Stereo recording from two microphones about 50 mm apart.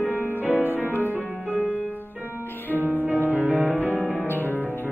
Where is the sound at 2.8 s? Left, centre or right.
Right.